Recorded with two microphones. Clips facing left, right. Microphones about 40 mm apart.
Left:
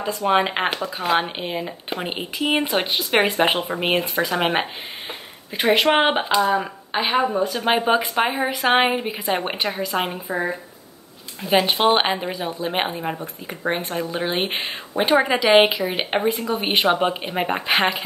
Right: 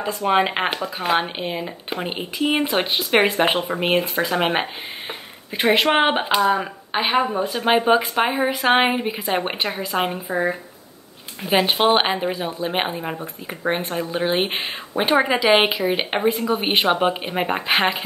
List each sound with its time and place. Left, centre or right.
0.0 s a woman's voice: centre
6.3 s a woman's voice: centre
7.6 s speech: centre